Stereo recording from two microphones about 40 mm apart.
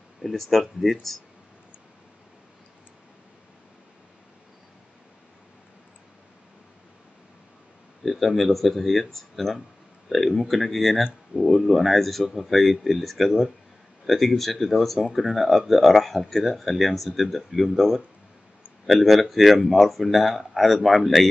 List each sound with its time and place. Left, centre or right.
0.2 s speech: centre
8.0 s speech: centre